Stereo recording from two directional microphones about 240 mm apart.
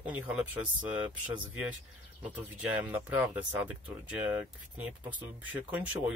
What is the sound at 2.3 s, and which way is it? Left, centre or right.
Speech, centre.